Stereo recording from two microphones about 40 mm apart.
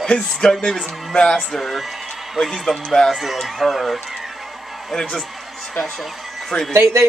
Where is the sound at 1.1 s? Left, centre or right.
Left.